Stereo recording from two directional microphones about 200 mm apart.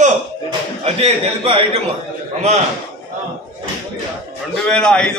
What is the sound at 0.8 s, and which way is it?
Speech, 30° right (ahead or behind).